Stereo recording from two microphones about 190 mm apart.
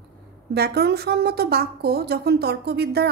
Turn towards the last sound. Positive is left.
turn(degrees=-60)  # may be behind; listen again after turning